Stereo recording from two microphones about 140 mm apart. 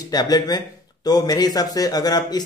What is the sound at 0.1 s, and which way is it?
A man's voice, 30° left (ahead or behind).